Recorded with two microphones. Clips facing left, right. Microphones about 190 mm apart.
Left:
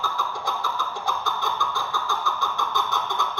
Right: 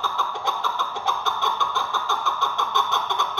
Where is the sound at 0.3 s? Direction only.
20° right (ahead or behind).